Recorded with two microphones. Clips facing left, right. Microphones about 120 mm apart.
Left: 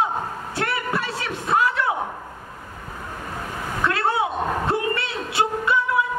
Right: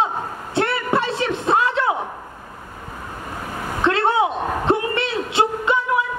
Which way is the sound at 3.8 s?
25° right (ahead or behind).